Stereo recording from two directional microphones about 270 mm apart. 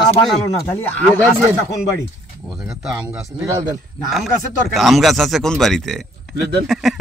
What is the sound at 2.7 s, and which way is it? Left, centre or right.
Speech, centre.